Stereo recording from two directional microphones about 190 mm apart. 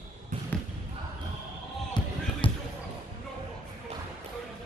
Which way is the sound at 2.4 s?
25° left (ahead or behind).